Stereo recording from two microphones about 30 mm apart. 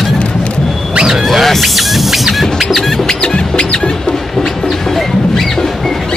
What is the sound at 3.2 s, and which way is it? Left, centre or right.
Music, left.